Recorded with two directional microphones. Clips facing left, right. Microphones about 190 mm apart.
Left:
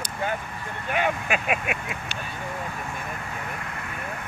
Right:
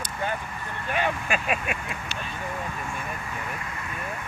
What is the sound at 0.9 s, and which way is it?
Vehicle, 10° left (ahead or behind).